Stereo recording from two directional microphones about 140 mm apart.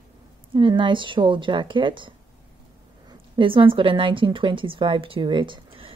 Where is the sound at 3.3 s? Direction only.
35° right (ahead or behind).